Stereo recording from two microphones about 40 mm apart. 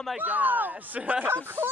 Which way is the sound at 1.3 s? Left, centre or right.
Right.